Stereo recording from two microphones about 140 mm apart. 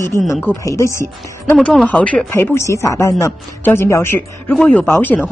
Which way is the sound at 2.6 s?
20° left (ahead or behind).